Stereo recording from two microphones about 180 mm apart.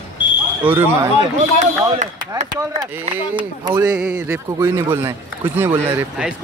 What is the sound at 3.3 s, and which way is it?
Speech, 25° right (ahead or behind).